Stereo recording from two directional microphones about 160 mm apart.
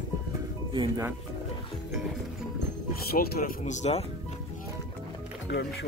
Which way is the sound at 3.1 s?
70° left (ahead or behind).